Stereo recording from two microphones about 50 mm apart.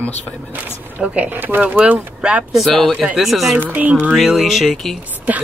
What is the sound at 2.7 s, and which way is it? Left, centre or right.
Speech, centre.